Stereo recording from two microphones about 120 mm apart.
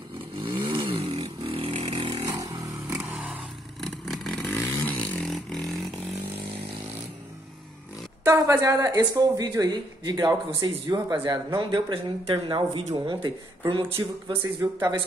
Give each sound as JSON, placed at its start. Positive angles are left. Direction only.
{"t": 0.4, "sound": "vehicle", "side_deg": -50}
{"t": 2.2, "sound": "motorcycle", "side_deg": -30}
{"t": 2.9, "sound": "vehicle", "side_deg": -10}
{"t": 3.8, "sound": "vehicle", "side_deg": 0}
{"t": 4.5, "sound": "vehicle", "side_deg": 20}
{"t": 5.3, "sound": "vehicle", "side_deg": 0}
{"t": 8.4, "sound": "speech", "side_deg": -30}
{"t": 14.4, "sound": "speech", "side_deg": -30}